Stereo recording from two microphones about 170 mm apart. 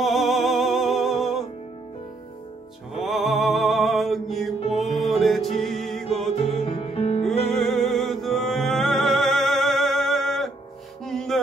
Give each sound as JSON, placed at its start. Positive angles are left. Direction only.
{"t": 0.0, "sound": "music", "side_deg": 0}
{"t": 2.9, "sound": "music", "side_deg": 0}
{"t": 6.6, "sound": "music", "side_deg": 35}
{"t": 7.4, "sound": "music", "side_deg": 0}